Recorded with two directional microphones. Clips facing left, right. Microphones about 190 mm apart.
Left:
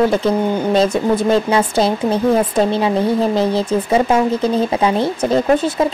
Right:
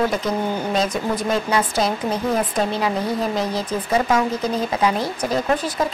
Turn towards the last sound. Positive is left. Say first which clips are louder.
# left 7 dB
turn(degrees=25)  # may be behind; listen again after turning